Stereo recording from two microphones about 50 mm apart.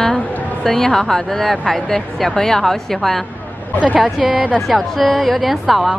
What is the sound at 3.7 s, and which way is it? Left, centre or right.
Speech, right.